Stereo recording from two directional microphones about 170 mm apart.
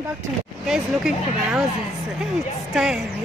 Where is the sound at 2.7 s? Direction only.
5° right (ahead or behind).